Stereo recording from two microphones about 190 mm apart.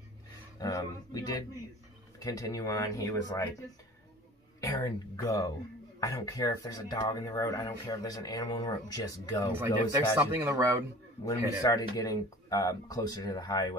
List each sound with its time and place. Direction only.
0.6 s speech: 20° left (ahead or behind)
4.6 s speech: 20° left (ahead or behind)
10.1 s speech: 15° right (ahead or behind)
11.2 s speech: 20° left (ahead or behind)